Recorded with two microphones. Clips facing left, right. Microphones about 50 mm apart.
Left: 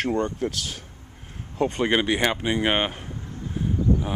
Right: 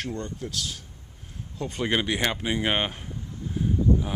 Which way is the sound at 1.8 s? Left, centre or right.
Centre.